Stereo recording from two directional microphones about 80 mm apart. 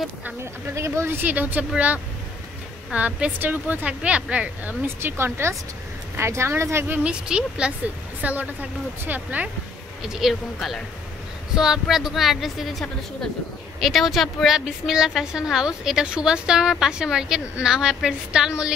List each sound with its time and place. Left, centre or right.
0.7 s speech: right
2.9 s a woman's voice: centre
4.8 s speech: right
7.0 s a woman's voice: centre
10.0 s a woman's voice: centre